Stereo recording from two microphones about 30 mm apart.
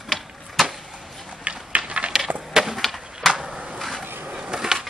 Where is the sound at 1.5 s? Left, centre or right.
Right.